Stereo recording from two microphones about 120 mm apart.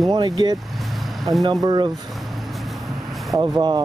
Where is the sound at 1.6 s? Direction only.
35° right (ahead or behind).